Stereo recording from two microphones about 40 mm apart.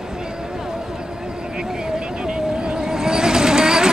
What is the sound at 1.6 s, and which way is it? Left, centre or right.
Vehicle, centre.